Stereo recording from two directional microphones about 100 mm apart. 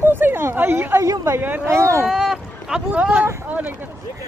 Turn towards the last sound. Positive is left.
turn(degrees=-10)  # may be behind; listen again after turning